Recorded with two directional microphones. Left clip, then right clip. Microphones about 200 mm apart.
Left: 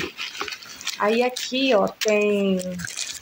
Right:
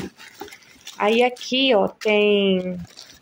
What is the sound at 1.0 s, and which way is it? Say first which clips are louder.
Speech: right 3 dB; 5° right (ahead or behind).